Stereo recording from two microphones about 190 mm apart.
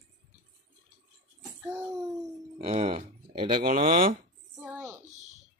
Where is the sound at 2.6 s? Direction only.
35° right (ahead or behind).